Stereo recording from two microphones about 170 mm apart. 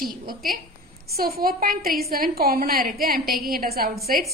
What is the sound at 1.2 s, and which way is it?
A woman's voice, 60° right (ahead or behind).